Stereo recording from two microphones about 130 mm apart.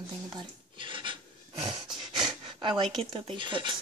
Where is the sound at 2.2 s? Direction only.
40° right (ahead or behind).